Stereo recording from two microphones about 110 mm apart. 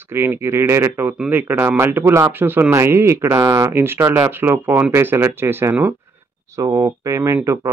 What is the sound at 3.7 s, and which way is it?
Speech, 20° right (ahead or behind).